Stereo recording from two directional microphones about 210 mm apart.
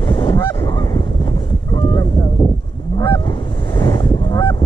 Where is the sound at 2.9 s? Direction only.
20° left (ahead or behind).